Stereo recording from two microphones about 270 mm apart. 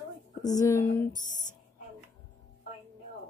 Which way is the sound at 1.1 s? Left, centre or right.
Left.